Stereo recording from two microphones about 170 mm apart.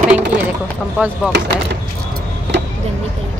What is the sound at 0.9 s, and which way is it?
Speech, 5° right (ahead or behind).